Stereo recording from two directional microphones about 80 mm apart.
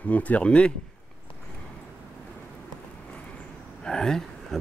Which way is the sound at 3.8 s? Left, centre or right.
Centre.